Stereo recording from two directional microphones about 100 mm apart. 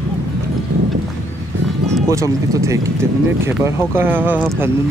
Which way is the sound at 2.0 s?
30° right (ahead or behind).